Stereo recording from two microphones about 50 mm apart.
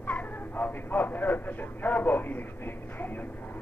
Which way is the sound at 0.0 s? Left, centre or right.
Left.